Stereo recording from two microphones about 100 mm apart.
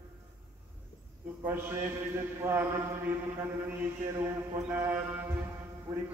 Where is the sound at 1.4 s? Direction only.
20° right (ahead or behind).